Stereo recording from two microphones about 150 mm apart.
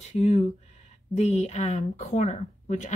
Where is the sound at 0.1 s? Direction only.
50° left (ahead or behind).